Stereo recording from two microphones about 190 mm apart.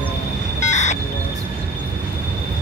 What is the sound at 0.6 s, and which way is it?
Vehicle, 40° left (ahead or behind).